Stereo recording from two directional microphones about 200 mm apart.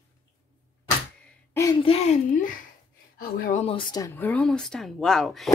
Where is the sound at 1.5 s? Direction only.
15° left (ahead or behind).